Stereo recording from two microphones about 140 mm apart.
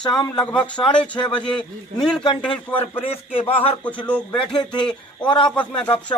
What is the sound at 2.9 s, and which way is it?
Speech, 40° left (ahead or behind).